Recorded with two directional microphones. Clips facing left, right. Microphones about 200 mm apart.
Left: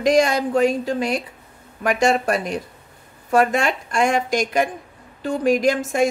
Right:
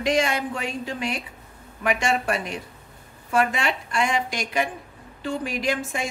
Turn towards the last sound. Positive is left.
turn(degrees=45)  # may be behind; listen again after turning